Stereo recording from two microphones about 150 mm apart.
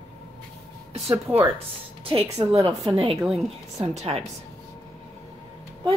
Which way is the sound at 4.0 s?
45° right (ahead or behind).